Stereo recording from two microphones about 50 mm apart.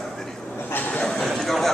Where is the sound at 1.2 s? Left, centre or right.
Centre.